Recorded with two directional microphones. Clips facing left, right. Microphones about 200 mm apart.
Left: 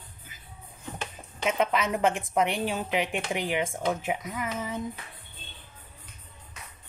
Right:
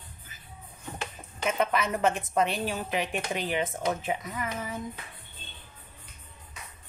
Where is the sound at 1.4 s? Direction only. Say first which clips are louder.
Left 1 dB; 15° left (ahead or behind).